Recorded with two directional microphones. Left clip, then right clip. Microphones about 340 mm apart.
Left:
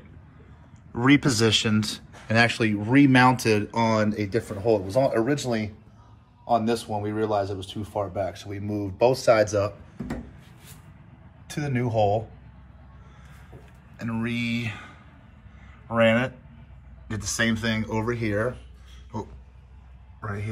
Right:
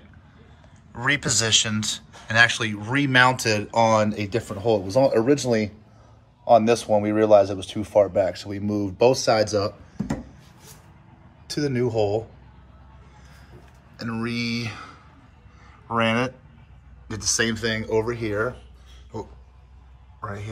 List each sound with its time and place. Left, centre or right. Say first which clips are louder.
0.9 s speech: left 2 dB; centre
11.5 s speech: right 5 dB; centre
13.9 s speech: right 1 dB; centre
15.9 s speech: left 1 dB; centre
17.5 s speech: right 3 dB; centre